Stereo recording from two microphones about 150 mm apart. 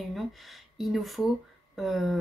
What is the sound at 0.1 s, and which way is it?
Speech, centre (ahead or behind).